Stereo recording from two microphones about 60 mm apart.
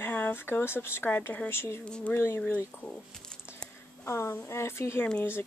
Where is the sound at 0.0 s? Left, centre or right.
Left.